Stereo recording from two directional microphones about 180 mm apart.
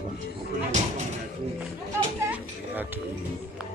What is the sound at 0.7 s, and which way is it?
Speech, 40° right (ahead or behind).